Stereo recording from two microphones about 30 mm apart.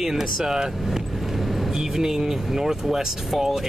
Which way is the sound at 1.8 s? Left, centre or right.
Centre.